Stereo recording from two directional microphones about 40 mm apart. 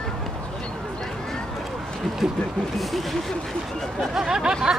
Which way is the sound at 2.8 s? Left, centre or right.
Centre.